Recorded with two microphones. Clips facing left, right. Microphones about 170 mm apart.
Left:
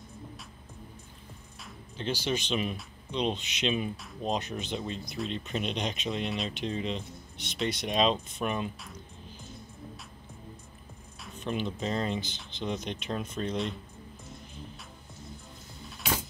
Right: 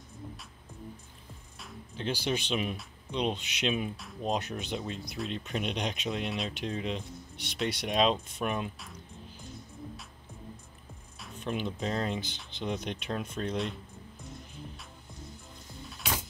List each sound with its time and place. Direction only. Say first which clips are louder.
1.6 s speech: right 1 dB; 5° right (ahead or behind)
11.1 s speech: left 1 dB; centre (ahead or behind)